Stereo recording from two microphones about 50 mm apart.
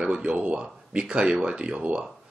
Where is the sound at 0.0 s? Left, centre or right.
Centre.